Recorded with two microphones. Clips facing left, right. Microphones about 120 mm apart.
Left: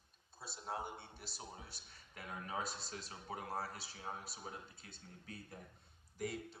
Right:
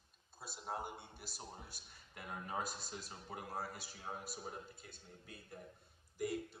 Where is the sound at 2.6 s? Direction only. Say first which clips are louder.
Even; 50° right (ahead or behind).